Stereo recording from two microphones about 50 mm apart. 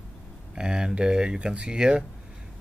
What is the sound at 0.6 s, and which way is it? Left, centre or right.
A man's voice, centre.